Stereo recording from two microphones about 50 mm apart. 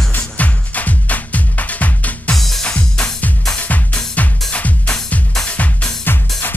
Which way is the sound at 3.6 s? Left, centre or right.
Left.